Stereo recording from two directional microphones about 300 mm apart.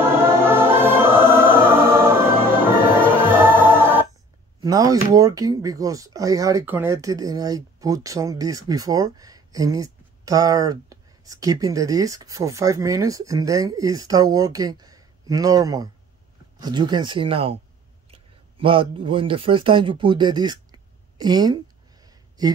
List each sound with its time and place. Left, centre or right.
0.0 s music: centre
4.6 s speech: centre